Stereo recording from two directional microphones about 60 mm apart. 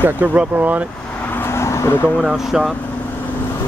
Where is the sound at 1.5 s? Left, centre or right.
Left.